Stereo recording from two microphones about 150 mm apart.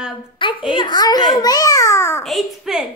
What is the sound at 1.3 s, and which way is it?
Babbling, 25° left (ahead or behind).